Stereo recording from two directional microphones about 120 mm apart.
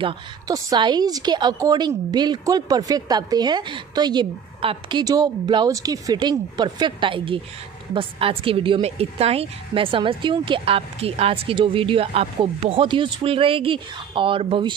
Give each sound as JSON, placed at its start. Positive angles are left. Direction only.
{"t": 0.5, "sound": "a woman's voice", "side_deg": -35}
{"t": 5.0, "sound": "a woman's voice", "side_deg": -30}